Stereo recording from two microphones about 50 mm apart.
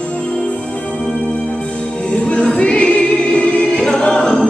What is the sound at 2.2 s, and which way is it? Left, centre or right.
Choir, left.